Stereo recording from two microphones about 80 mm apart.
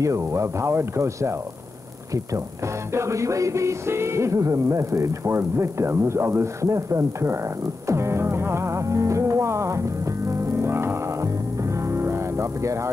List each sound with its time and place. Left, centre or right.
0.0 s music: right